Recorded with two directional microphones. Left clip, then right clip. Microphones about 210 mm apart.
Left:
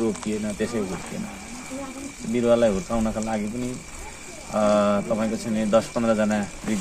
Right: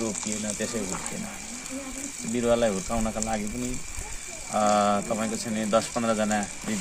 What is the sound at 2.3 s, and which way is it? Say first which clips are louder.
Speech: left 4 dB; 15° right (ahead or behind).